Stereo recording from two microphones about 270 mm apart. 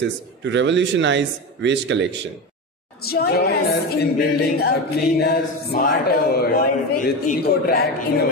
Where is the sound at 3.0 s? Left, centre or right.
Left.